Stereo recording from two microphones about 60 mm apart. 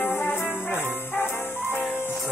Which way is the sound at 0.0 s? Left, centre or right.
Left.